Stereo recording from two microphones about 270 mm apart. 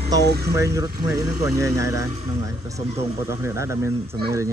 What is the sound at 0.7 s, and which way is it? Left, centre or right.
Speech, centre.